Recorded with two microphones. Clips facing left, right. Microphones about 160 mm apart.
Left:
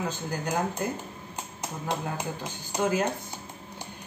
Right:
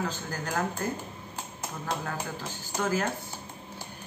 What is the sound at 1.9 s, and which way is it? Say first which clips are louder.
Speech: left 2 dB; 15° left (ahead or behind).